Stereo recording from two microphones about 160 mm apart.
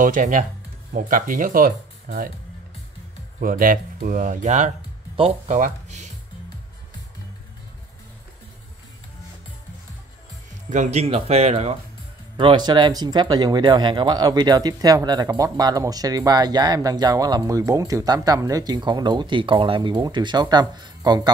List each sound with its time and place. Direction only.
0.0 s speech: 55° right (ahead or behind)
3.3 s speech: 60° right (ahead or behind)
10.7 s speech: 45° right (ahead or behind)
12.4 s speech: 30° right (ahead or behind)